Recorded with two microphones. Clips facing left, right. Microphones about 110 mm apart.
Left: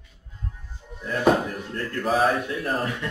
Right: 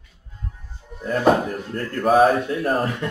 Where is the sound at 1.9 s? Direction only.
45° right (ahead or behind).